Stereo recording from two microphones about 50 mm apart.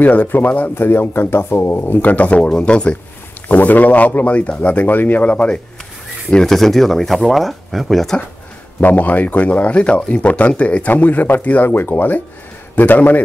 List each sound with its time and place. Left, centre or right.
0.0 s speech: left
3.4 s speech: left
5.3 s speech: left
6.3 s speech: centre
8.8 s speech: left